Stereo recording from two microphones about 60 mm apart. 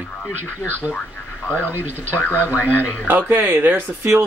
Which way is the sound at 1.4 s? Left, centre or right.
Left.